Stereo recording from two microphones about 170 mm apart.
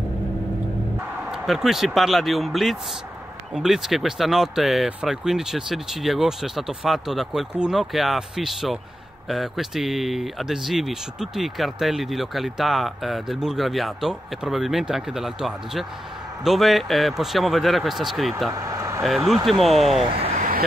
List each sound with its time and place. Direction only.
1.3 s speech: centre (ahead or behind)
18.5 s speech: 20° right (ahead or behind)
19.0 s speech: centre (ahead or behind)
20.2 s vehicle: 35° right (ahead or behind)